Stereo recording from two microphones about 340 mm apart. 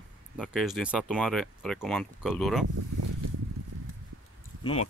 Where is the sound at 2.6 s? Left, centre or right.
Right.